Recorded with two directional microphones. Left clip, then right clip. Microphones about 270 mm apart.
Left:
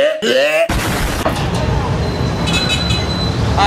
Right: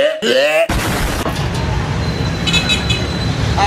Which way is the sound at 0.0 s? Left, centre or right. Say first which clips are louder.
Even; centre.